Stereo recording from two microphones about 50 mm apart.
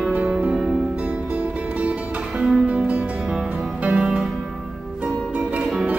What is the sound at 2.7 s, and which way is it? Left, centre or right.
Music, right.